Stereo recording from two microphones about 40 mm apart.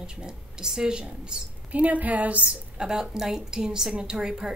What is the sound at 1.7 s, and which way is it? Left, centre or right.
Speech, right.